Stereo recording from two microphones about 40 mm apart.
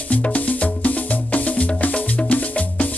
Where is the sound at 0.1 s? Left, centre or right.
Left.